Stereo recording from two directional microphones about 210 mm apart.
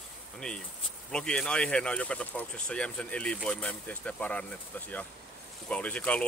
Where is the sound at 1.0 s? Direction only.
5° left (ahead or behind).